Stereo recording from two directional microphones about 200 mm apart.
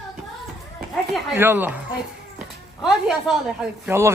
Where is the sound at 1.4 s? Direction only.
10° right (ahead or behind).